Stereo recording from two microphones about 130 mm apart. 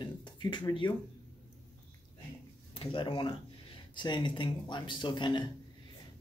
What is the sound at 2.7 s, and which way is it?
Speech, 40° left (ahead or behind).